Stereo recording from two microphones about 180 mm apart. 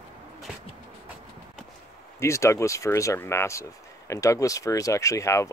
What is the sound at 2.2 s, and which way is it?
Speech, 15° left (ahead or behind).